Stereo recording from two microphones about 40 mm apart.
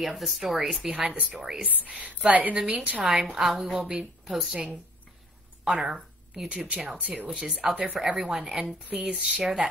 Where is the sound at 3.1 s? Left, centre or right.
Right.